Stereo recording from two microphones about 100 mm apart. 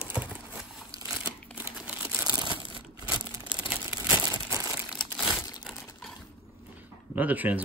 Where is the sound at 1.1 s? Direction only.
15° right (ahead or behind).